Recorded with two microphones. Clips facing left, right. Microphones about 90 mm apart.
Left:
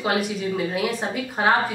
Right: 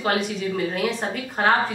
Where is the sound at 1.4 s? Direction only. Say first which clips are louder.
Even; 5° left (ahead or behind).